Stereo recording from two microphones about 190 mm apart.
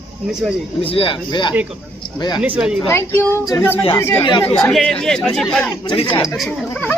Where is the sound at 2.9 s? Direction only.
10° left (ahead or behind).